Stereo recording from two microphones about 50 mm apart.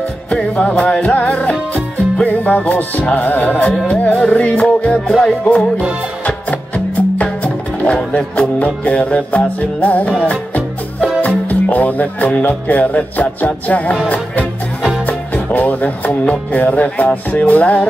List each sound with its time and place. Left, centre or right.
0.3 s music: left
0.8 s music: centre
1.1 s music: left
6.2 s music: left